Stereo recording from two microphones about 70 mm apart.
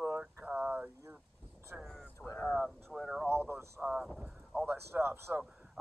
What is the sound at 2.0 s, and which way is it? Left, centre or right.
Speech, left.